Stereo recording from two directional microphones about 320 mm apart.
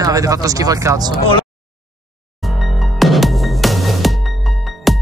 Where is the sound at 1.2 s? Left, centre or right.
Centre.